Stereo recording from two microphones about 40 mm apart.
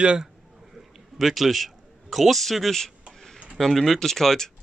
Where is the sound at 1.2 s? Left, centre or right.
Centre.